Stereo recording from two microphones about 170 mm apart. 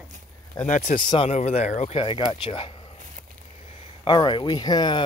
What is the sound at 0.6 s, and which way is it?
Speech, 50° left (ahead or behind).